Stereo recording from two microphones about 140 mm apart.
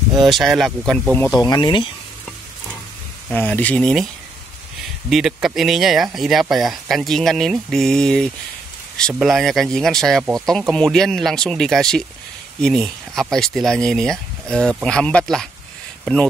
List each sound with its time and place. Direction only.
0.1 s speech: centre (ahead or behind)
1.4 s speech: 30° left (ahead or behind)
3.3 s speech: 10° left (ahead or behind)
5.1 s speech: 5° right (ahead or behind)